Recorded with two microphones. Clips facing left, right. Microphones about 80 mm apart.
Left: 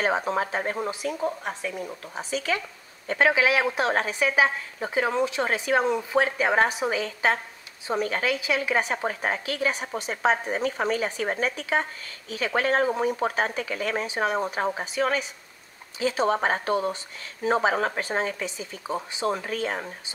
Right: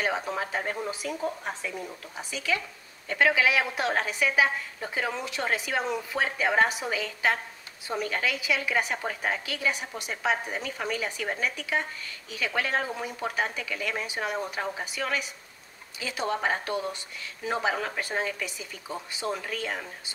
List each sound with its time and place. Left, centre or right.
0.0 s a woman's voice: left